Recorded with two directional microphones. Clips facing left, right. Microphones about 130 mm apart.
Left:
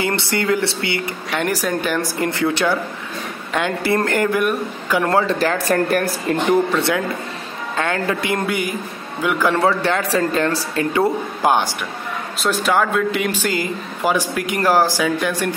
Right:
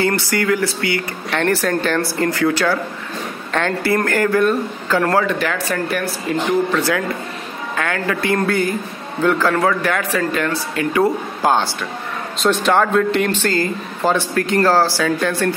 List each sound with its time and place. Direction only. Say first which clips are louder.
0.0 s speech: right 2 dB; 25° left (ahead or behind)
1.3 s speech: right 3 dB; 10° left (ahead or behind)
5.2 s speech: left 1 dB; 30° left (ahead or behind)
5.7 s speech: left 4 dB; 45° left (ahead or behind)
6.7 s speech: even; 20° left (ahead or behind)
9.6 s speech: even; 30° left (ahead or behind)
12.4 s speech: right 3 dB; 5° left (ahead or behind)